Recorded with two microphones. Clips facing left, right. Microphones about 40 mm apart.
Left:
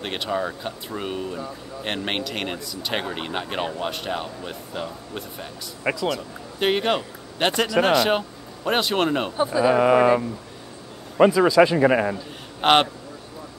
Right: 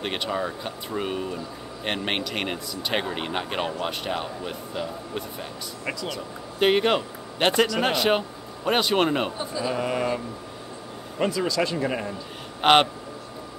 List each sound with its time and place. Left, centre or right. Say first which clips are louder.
0.0 s a man's voice: left 1 dB; centre
9.4 s speech: left 9 dB; left
11.1 s a man's voice: left 9 dB; left
11.7 s a man's voice: left 9 dB; left
12.6 s speech: even; centre